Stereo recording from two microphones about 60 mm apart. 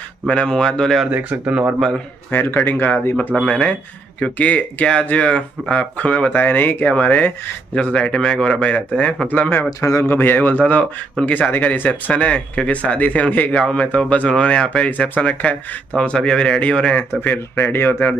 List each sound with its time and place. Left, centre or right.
0.3 s a man's voice: centre
1.1 s speech: right
2.3 s speech: left
3.4 s a man's voice: centre
4.2 s speech: left
7.7 s a man's voice: centre
9.4 s speech: left
9.7 s a man's voice: left
10.0 s speech: left
12.1 s a man's voice: centre
17.2 s speech: left